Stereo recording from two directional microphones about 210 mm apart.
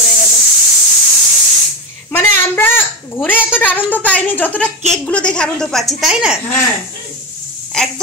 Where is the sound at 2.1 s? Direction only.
10° left (ahead or behind).